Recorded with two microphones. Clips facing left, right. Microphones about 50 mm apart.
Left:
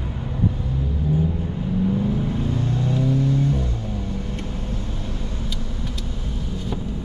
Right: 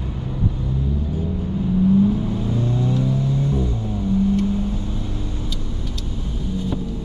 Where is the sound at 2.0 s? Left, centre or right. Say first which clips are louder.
Right 2 dB; centre.